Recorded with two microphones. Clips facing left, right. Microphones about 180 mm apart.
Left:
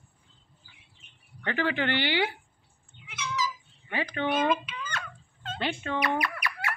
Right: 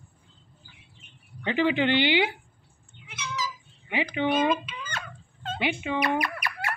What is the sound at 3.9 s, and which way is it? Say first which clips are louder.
Speech: right 3 dB; 15° right (ahead or behind).